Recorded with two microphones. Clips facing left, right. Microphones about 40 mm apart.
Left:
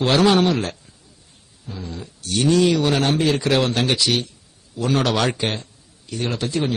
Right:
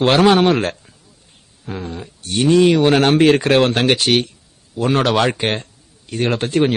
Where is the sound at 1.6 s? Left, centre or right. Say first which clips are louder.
Right 6 dB; right.